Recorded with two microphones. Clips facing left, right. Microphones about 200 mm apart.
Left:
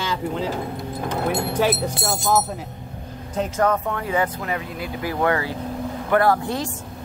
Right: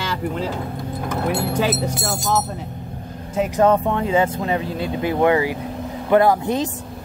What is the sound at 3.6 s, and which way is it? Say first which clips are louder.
Speech: right 6 dB; 25° right (ahead or behind).